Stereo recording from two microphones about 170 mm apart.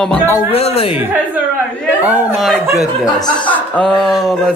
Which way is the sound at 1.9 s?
5° right (ahead or behind).